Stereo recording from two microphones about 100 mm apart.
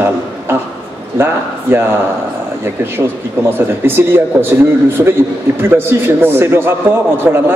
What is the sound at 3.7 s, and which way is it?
A man's voice, 20° right (ahead or behind).